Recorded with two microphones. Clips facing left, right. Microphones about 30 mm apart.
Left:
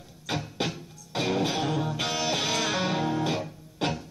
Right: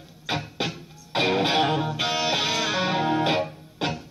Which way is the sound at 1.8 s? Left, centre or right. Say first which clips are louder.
Right 3 dB; centre.